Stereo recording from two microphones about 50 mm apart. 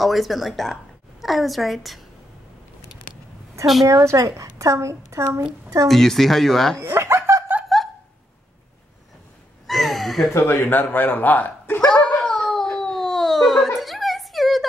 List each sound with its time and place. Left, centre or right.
0.0 s speech: centre
3.8 s a woman's voice: right
5.9 s speech: centre
6.8 s snicker: right
7.7 s a sound: centre
9.7 s a sound: centre
10.5 s speech: left
11.8 s baby cry: centre
12.6 s a sound: centre